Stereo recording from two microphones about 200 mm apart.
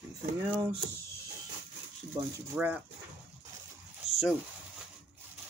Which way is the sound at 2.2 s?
20° right (ahead or behind).